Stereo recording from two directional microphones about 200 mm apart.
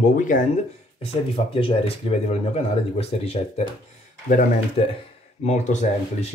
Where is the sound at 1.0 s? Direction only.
30° left (ahead or behind).